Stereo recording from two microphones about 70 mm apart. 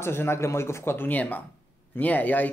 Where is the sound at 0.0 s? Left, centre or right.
Left.